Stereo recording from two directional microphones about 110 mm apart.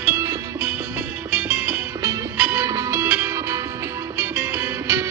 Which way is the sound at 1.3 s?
15° right (ahead or behind).